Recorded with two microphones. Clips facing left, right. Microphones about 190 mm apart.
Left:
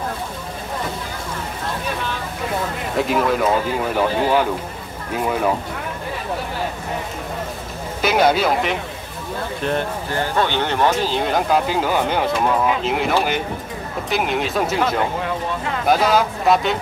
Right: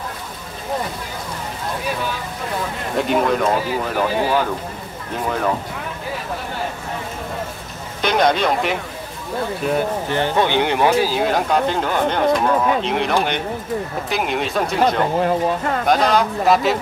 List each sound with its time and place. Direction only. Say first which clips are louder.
3.0 s speech: right 1 dB; centre (ahead or behind)
8.0 s speech: left 1 dB; 5° left (ahead or behind)
10.1 s speech: right 2 dB; 20° right (ahead or behind); by 15.0 s centre (ahead or behind)
15.2 s speech: right 5 dB; 45° right (ahead or behind)
15.9 s speech: left 1 dB; 5° left (ahead or behind)